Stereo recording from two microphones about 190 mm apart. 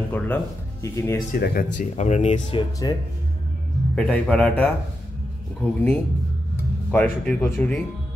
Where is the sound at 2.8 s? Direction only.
20° left (ahead or behind).